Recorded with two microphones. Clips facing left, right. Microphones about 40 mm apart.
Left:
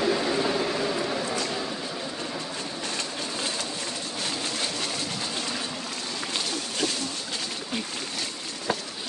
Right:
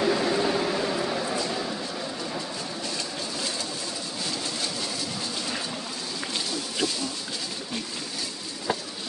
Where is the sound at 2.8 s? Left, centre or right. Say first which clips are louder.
Left 1 dB; left.